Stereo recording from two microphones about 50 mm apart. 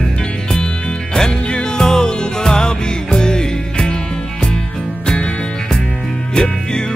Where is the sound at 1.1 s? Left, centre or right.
Centre.